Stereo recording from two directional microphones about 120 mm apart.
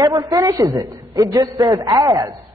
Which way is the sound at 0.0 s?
30° right (ahead or behind).